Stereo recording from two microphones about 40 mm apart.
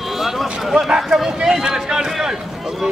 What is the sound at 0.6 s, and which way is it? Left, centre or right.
A man's voice, centre.